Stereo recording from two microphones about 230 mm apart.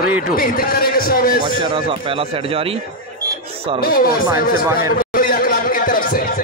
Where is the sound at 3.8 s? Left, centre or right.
Left.